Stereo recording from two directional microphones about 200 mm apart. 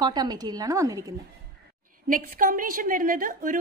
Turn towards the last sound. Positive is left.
turn(degrees=-40)  # may be behind; listen again after turning